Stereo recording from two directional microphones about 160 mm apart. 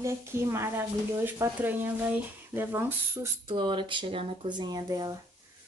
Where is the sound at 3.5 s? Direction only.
30° right (ahead or behind).